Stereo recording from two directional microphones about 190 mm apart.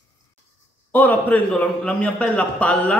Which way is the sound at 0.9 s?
10° left (ahead or behind).